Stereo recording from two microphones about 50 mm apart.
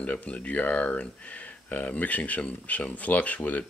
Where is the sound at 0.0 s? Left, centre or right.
Left.